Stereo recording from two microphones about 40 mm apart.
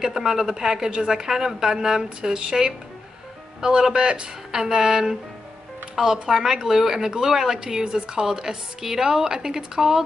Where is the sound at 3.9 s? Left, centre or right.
Right.